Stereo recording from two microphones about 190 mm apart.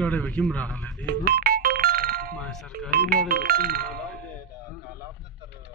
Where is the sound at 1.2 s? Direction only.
50° right (ahead or behind).